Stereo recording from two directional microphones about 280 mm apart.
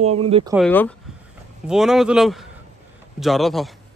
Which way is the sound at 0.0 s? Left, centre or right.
Right.